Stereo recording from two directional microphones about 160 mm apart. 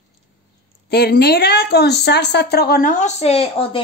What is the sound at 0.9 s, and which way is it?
Speech, 80° left.